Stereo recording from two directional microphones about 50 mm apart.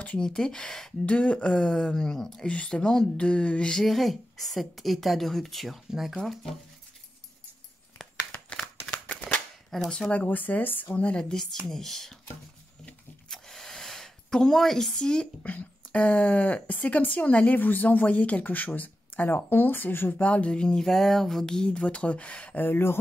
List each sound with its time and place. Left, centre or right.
0.2 s speech: centre
1.0 s speech: left
2.4 s speech: centre
3.8 s a woman's voice: centre
9.1 s cap gun: centre
9.7 s speech: centre
10.1 s speech: left
11.0 s speech: left
13.3 s a sound: centre
15.4 s speech: left
19.3 s speech: left
20.2 s speech: left
20.9 s speech: centre; by 22.6 s left
22.6 s speech: left